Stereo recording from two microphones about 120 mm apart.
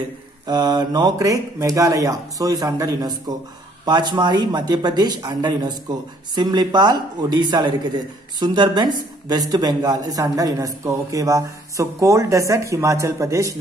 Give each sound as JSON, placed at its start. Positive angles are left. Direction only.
{"t": 0.5, "sound": "speech", "side_deg": -35}